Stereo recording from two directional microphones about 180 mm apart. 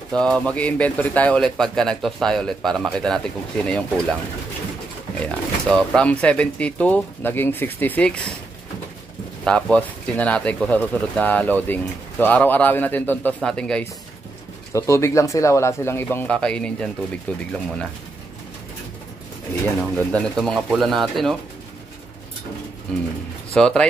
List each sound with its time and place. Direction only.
0.1 s speech: 5° left (ahead or behind)
5.2 s speech: 5° left (ahead or behind)
9.4 s speech: 5° left (ahead or behind)
14.7 s speech: 15° left (ahead or behind)
19.8 s speech: 5° left (ahead or behind)
22.9 s speech: 5° left (ahead or behind)